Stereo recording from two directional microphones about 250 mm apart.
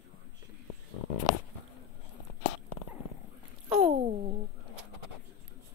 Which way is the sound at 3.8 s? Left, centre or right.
Right.